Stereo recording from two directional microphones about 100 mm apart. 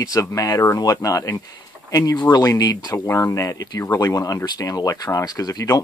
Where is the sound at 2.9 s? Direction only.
30° left (ahead or behind).